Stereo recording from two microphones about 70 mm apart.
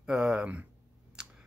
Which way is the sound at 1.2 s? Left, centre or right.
Centre.